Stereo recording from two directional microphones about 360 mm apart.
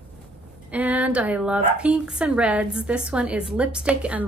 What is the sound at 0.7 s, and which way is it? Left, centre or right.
Speech, centre.